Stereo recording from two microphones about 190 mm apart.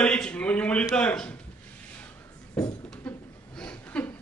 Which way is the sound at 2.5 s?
15° left (ahead or behind).